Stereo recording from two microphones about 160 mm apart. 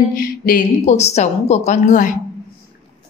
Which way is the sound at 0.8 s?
45° left (ahead or behind).